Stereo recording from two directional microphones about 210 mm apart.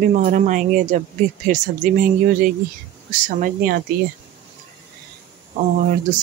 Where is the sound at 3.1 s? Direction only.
40° right (ahead or behind).